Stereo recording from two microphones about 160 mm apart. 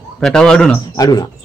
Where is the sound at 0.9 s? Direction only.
25° left (ahead or behind).